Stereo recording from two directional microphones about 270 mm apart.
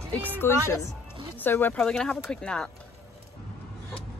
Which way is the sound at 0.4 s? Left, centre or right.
Centre.